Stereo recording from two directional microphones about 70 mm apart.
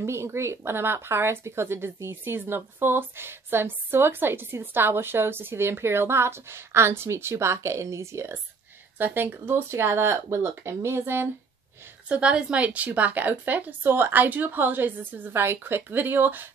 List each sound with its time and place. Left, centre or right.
0.0 s speech: right
8.9 s speech: right
12.1 s a woman's voice: centre; by 16.4 s right